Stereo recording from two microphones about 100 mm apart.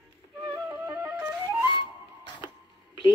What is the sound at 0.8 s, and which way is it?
Flute, 25° right (ahead or behind).